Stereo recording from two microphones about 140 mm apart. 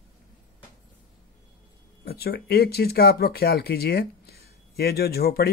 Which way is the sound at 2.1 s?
90° left.